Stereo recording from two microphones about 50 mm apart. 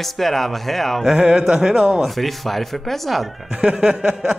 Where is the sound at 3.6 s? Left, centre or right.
Centre.